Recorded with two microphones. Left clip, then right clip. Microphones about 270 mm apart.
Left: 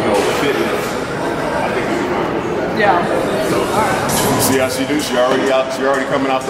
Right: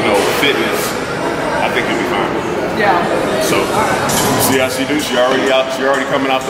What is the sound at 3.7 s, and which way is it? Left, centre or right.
Music, centre.